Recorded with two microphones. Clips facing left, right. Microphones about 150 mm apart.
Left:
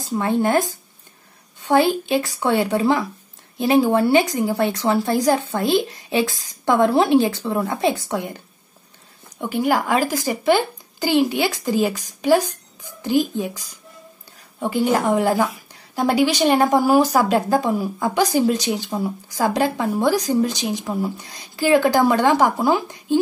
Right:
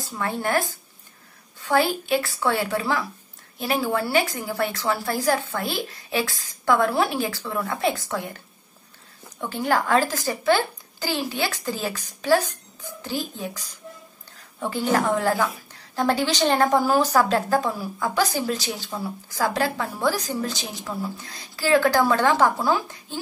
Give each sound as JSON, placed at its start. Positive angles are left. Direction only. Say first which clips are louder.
{"t": 0.0, "sound": "a woman's voice", "louder": "left 7 dB", "side_deg": 20}
{"t": 9.4, "sound": "a woman's voice", "louder": "left 4 dB", "side_deg": 10}